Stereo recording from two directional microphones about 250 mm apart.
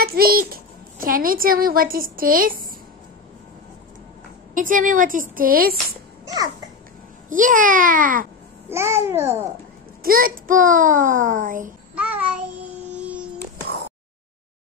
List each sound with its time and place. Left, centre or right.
0.0 s a child's voice: right
4.6 s a child's voice: right
6.2 s babbling: centre
7.2 s a child's voice: right
8.6 s a child's voice: centre
10.0 s a child's voice: right
11.9 s child singing: centre
12.8 s a sound: centre